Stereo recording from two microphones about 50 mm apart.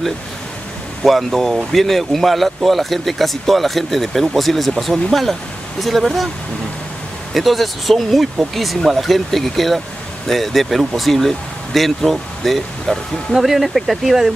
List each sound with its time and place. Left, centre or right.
1.0 s speech: centre
7.3 s speech: centre